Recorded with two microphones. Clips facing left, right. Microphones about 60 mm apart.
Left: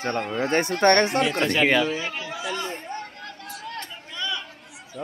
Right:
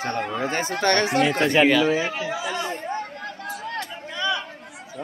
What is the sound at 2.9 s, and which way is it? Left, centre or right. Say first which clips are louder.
Chatter: right 5 dB; right.